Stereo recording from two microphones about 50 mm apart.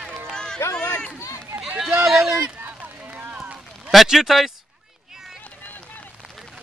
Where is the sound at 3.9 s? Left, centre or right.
Centre.